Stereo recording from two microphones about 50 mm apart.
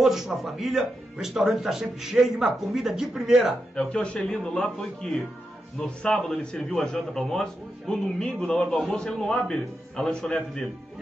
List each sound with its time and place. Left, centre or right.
0.0 s a man's voice: centre
3.7 s a man's voice: left